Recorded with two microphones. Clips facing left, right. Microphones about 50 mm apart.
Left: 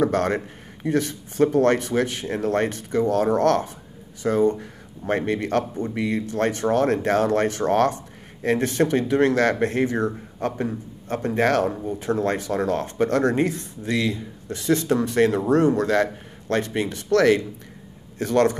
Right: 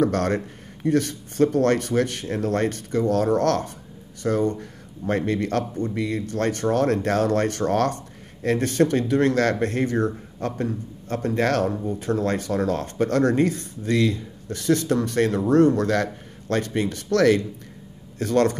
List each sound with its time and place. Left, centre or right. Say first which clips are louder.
0.0 s speech: even; centre